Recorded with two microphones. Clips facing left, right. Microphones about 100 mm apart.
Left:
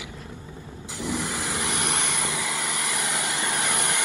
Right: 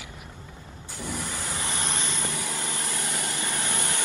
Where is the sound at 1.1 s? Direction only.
75° left (ahead or behind).